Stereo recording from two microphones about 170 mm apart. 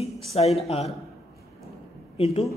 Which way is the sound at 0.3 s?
40° left (ahead or behind).